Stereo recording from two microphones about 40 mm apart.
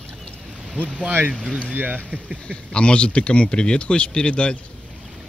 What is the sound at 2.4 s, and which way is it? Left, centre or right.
Speech, left.